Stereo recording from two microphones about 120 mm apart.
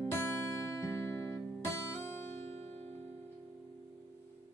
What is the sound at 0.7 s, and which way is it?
Music, 20° left (ahead or behind).